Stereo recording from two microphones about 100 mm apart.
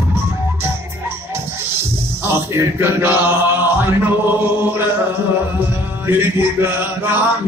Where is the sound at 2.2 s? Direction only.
25° right (ahead or behind).